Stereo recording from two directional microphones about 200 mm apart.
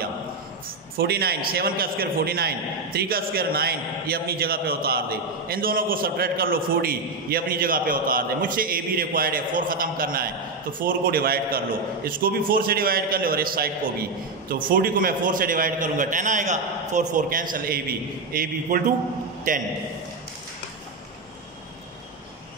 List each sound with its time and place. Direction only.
0.9 s a man's voice: 50° right (ahead or behind)
14.7 s a man's voice: 45° right (ahead or behind)